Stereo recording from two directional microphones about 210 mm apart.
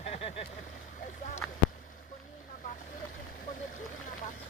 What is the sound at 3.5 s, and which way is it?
Vehicle, 40° left (ahead or behind).